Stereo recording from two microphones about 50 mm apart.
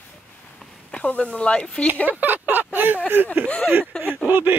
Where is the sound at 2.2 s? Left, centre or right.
Right.